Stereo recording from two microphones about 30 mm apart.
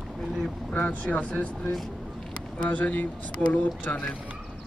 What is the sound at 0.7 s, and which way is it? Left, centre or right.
Speech, left.